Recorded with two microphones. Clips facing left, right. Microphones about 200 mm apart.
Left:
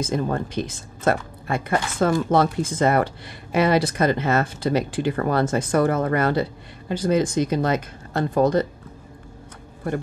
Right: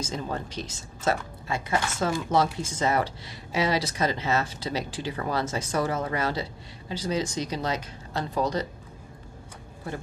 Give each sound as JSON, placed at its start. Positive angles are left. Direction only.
{"t": 0.0, "sound": "speech", "side_deg": 55}